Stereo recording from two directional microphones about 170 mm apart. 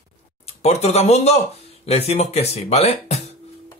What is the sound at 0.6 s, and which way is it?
Speech, 40° left (ahead or behind).